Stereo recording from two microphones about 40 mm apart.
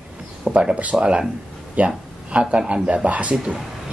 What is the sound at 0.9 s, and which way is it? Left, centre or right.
Speech, right.